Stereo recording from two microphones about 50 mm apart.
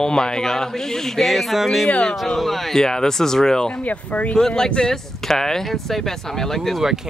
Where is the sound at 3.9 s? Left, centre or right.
Left.